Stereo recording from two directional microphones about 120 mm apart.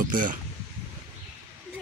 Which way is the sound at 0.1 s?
90° right.